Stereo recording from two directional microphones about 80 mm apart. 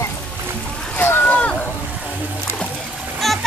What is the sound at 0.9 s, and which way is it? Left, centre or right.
Boat, left.